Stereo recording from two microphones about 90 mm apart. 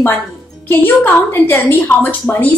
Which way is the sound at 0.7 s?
25° left (ahead or behind).